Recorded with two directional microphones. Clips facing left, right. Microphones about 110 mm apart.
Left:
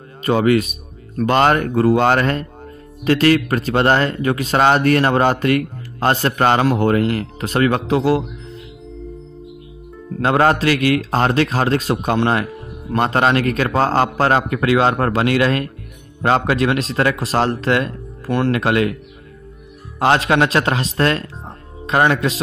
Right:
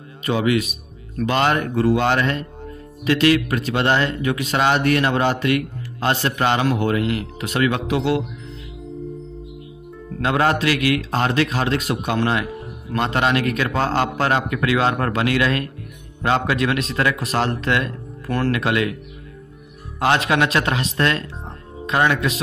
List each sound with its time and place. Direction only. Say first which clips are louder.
0.2 s speech: left 4 dB; 45° left (ahead or behind)
10.2 s speech: left 4 dB; 40° left (ahead or behind)
20.0 s speech: left 3 dB; 35° left (ahead or behind)